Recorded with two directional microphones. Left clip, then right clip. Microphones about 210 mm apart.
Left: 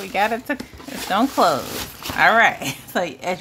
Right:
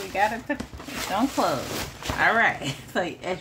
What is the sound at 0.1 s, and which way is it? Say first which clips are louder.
A woman's voice: left 4 dB; 55° left (ahead or behind).